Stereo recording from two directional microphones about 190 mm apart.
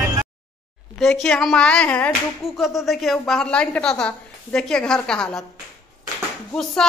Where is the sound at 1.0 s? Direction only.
5° left (ahead or behind).